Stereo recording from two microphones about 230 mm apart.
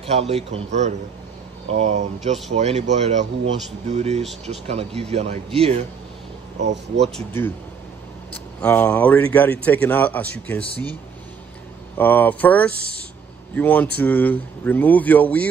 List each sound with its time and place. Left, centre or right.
0.0 s speech: right
7.2 s a man's voice: centre
12.0 s a man's voice: centre